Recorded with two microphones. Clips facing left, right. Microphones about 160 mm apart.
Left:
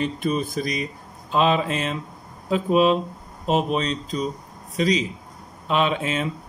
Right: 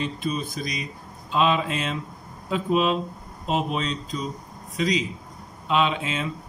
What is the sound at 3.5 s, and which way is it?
Mantra, 35° left (ahead or behind).